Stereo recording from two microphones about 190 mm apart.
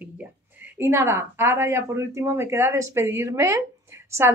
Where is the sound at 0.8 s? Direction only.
15° right (ahead or behind).